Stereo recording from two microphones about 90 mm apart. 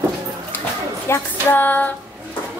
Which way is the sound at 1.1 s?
20° left (ahead or behind).